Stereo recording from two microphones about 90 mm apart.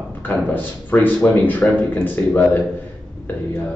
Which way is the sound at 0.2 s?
20° left (ahead or behind).